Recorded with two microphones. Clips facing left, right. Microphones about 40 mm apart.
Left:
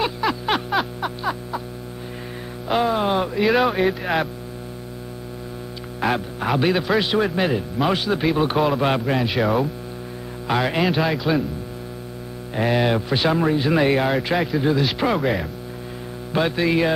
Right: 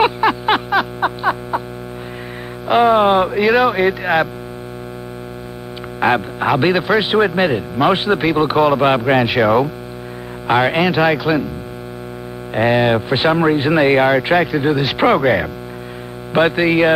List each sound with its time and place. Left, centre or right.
0.2 s a sound: right
2.7 s speech: right
3.4 s speech: centre
5.9 s speech: right
8.2 s speech: centre
9.3 s a man's voice: centre
10.4 s speech: right
10.8 s a man's voice: centre
12.5 s speech: right
14.3 s a man's voice: centre
14.6 s speech: right
15.0 s speech: right
16.3 s speech: right